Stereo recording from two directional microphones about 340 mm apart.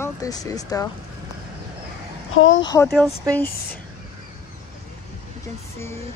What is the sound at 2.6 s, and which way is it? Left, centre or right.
Speech, centre.